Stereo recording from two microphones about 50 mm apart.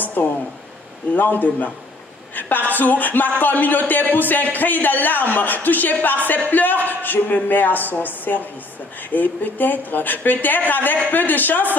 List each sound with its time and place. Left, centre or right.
0.0 s a sound: left
1.1 s speech: left
2.7 s speech: left